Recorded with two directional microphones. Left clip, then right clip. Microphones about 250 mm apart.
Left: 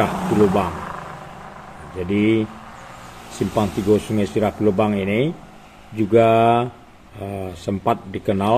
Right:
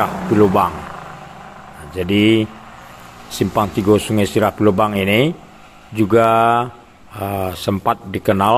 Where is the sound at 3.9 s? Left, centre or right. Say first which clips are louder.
Right 3 dB; centre.